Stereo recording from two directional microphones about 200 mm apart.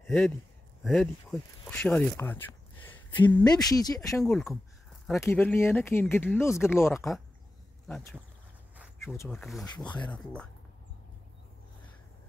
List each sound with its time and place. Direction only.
0.0 s speech: centre (ahead or behind); by 4.2 s 20° left (ahead or behind)
4.2 s speech: centre (ahead or behind)
6.9 s speech: centre (ahead or behind)
8.7 s a sound: 5° right (ahead or behind)
9.3 s speech: centre (ahead or behind)